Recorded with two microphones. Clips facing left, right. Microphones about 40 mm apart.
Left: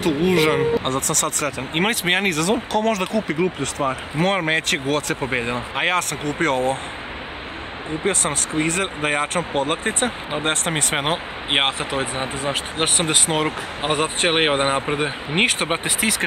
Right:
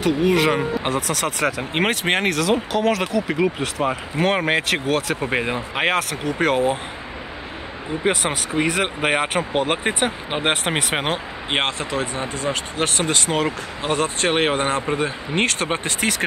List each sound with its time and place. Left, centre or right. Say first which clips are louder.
0.0 s speech: even; centre
0.8 s speech: even; centre
8.0 s speech: right 2 dB; centre
10.0 s speech: right 1 dB; right
10.9 s speech: left 3 dB; centre
11.5 s speech: left 2 dB; centre
13.1 s speech: even; centre
16.0 s speech: right 1 dB; centre